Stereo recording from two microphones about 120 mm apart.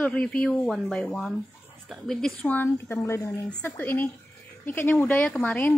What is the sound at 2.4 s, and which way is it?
A woman's voice, 15° left (ahead or behind).